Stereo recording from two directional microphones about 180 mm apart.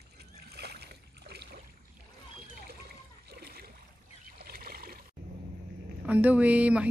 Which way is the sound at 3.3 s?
60° right (ahead or behind).